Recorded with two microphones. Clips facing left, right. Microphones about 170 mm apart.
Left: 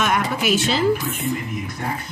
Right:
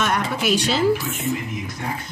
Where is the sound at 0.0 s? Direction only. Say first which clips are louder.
Left 1 dB; 5° left (ahead or behind).